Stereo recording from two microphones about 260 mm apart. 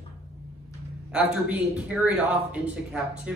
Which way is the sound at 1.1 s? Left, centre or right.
Centre.